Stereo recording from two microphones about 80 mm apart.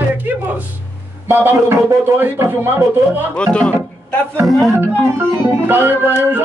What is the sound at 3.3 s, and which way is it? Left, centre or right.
Speech, centre.